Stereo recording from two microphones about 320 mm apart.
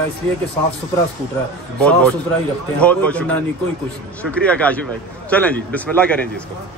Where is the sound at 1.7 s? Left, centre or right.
Centre.